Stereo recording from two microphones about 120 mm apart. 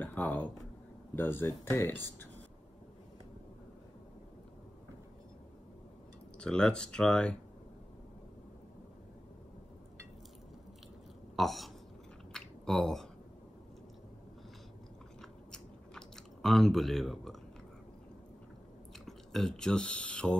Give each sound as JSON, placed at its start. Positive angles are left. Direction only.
{"t": 0.0, "sound": "a sound", "side_deg": 15}
{"t": 1.1, "sound": "speech", "side_deg": 20}
{"t": 6.4, "sound": "speech", "side_deg": 5}
{"t": 11.3, "sound": "a sound", "side_deg": 0}
{"t": 15.5, "sound": "chewing", "side_deg": 5}
{"t": 19.0, "sound": "speech", "side_deg": 5}